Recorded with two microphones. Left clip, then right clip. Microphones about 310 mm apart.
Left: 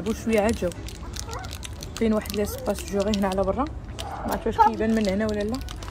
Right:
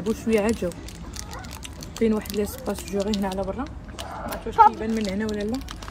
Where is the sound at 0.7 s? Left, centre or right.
Right.